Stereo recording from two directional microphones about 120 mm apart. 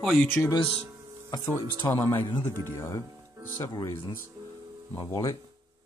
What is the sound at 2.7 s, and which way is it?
Speech, 25° left (ahead or behind).